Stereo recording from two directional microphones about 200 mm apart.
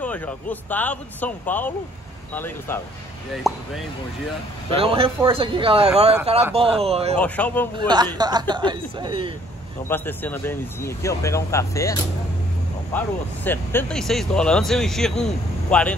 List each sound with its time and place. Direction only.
0.0 s speech: 10° left (ahead or behind)
4.7 s speech: 30° right (ahead or behind)
7.2 s speech: 5° left (ahead or behind)
7.7 s speech: 20° right (ahead or behind)
9.8 s speech: 10° left (ahead or behind)